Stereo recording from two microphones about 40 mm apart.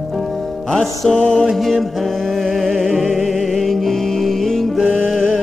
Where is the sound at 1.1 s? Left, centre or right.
Left.